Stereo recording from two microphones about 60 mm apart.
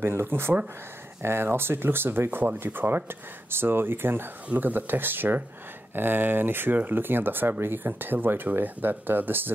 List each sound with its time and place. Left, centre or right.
0.0 s speech: right